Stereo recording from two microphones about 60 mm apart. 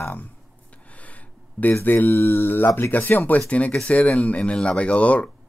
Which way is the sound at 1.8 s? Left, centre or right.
Left.